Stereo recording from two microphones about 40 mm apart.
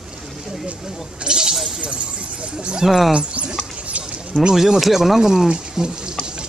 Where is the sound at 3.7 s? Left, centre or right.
Right.